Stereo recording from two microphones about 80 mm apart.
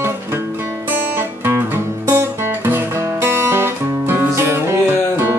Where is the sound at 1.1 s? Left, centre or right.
Right.